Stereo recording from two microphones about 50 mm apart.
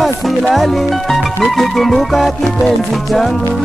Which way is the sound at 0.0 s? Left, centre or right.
Centre.